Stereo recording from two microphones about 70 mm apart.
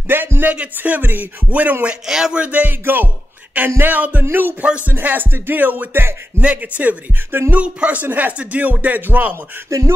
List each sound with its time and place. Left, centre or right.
0.1 s speech: right
2.0 s speech: centre
2.4 s speech: right
4.2 s music: right
4.8 s speech: right
6.4 s speech: right
7.5 s speech: centre
9.7 s speech: right